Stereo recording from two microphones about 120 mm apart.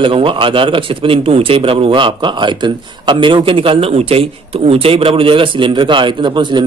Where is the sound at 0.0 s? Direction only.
45° right (ahead or behind).